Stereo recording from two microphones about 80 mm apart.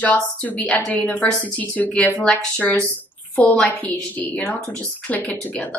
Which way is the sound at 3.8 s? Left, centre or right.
Centre.